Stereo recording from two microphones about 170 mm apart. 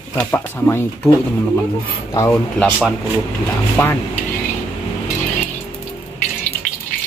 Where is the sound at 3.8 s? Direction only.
15° left (ahead or behind).